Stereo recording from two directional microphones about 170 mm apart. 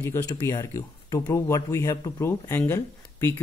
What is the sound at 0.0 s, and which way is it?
Speech, 20° left (ahead or behind).